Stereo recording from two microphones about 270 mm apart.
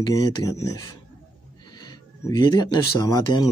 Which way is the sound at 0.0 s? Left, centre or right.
Centre.